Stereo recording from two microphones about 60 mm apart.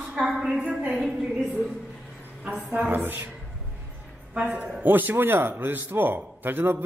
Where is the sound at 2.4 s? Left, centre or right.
Centre.